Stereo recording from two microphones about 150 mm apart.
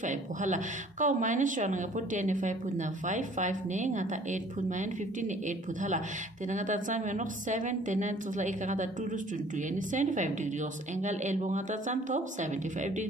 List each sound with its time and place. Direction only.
0.0 s a woman's voice: 55° right (ahead or behind)